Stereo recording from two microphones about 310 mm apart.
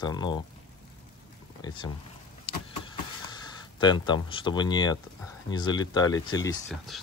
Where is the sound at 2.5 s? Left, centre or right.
Centre.